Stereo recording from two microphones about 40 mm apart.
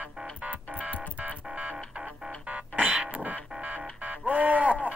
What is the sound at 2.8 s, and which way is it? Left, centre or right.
Printer, right.